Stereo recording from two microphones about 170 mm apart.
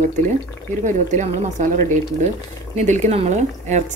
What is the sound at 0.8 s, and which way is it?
Speech, 45° right (ahead or behind).